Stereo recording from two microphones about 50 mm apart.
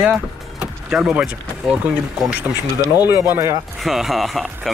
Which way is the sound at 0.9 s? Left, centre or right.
Centre.